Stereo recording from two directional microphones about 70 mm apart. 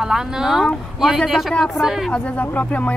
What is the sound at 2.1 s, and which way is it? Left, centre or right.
Speech, centre.